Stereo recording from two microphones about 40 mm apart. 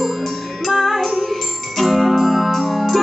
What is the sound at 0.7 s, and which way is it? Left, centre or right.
Music, centre.